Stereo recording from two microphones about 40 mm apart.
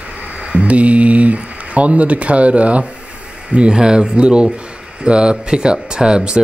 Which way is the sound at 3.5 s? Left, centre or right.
Right.